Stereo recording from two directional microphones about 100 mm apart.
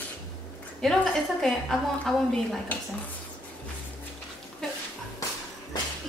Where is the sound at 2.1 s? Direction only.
Centre (ahead or behind).